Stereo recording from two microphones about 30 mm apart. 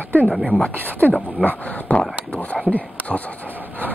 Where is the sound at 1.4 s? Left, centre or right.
Left.